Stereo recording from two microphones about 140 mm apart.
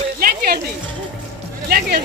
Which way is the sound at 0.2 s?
90° right.